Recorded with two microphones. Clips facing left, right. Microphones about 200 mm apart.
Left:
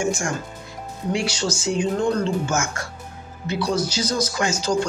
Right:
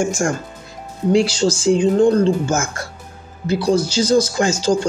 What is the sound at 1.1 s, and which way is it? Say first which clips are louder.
Speech: right 9 dB; 30° right (ahead or behind).